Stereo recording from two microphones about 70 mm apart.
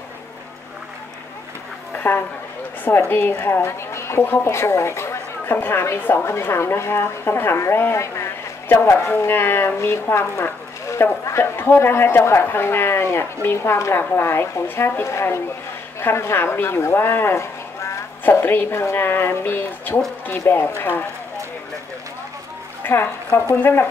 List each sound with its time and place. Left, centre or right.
2.8 s a woman's voice: left
22.8 s a woman's voice: left